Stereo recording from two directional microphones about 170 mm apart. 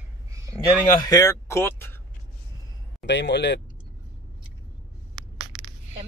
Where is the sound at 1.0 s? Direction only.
20° left (ahead or behind).